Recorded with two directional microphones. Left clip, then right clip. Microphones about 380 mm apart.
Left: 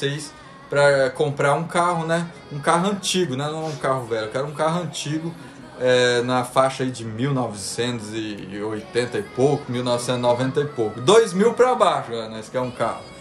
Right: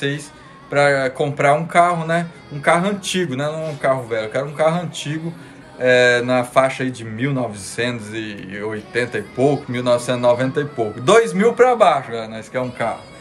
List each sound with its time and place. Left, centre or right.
0.7 s speech: centre